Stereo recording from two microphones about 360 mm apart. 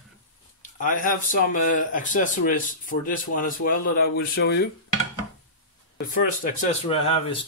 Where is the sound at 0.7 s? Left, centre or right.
Left.